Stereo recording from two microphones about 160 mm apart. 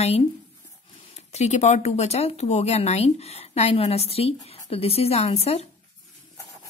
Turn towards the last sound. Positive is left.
turn(degrees=40)  # may be behind; listen again after turning